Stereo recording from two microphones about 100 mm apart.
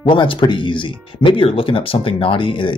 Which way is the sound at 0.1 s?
55° left (ahead or behind).